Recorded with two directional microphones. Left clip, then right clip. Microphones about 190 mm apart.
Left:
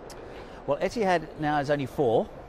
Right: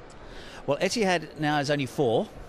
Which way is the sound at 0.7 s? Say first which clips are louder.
Even; 10° left (ahead or behind).